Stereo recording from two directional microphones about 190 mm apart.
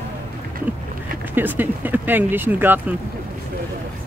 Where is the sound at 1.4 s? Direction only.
10° right (ahead or behind).